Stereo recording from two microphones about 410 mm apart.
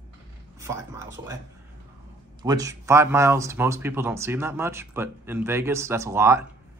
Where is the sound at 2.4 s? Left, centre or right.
Centre.